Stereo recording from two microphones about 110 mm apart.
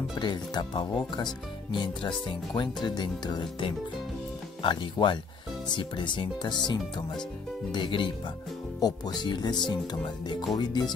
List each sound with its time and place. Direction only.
0.2 s speech: 40° left (ahead or behind)
8.7 s speech: 35° left (ahead or behind)